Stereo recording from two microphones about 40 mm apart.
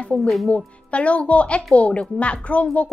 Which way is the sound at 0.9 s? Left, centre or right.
Left.